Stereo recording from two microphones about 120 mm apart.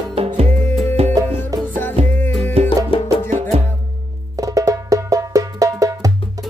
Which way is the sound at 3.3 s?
90° right.